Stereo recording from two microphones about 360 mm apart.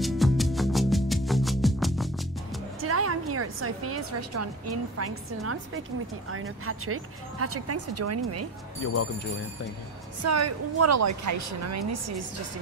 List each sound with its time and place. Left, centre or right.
0.0 s music: centre
2.8 s a woman's voice: right
8.9 s speech: left
10.2 s a woman's voice: right